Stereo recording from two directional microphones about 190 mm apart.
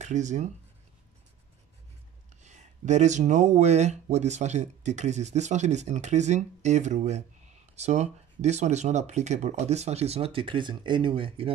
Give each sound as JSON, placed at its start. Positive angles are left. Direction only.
{"t": 0.0, "sound": "speech", "side_deg": -40}
{"t": 2.4, "sound": "speech", "side_deg": -40}